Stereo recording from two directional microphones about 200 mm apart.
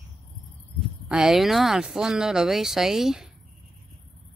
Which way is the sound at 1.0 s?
5° right (ahead or behind).